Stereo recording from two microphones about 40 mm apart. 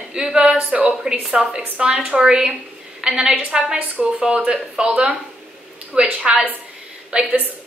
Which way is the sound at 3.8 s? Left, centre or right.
Right.